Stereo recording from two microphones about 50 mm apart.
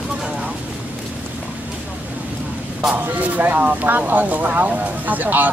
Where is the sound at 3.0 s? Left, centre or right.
Right.